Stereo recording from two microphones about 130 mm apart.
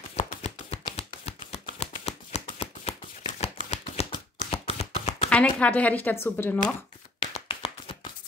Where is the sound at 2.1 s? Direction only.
60° left (ahead or behind).